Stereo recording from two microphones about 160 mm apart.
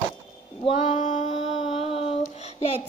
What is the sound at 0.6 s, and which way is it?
Speech, 40° left (ahead or behind).